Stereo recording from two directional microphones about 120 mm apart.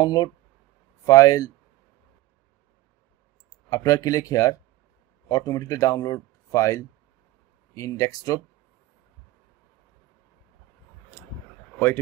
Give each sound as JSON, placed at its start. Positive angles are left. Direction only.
{"t": 0.0, "sound": "speech", "side_deg": 35}
{"t": 3.7, "sound": "speech", "side_deg": 30}